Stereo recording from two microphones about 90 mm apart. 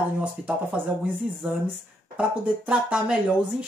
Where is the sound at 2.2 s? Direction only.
15° right (ahead or behind).